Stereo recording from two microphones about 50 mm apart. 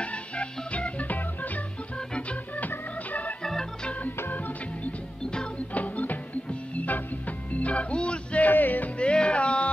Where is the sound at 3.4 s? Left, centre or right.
Centre.